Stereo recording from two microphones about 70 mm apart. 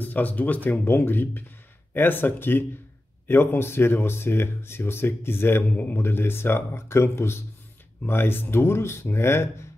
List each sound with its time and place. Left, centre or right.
0.0 s speech: left